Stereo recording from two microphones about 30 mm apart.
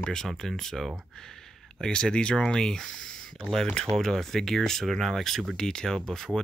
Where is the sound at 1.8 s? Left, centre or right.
Left.